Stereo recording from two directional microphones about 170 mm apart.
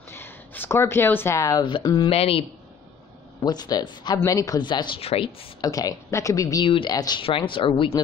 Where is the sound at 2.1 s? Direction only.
35° left (ahead or behind).